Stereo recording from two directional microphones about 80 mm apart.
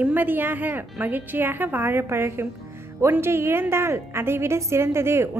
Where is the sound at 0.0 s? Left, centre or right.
Right.